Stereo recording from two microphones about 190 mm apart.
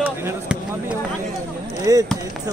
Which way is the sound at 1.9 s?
15° right (ahead or behind).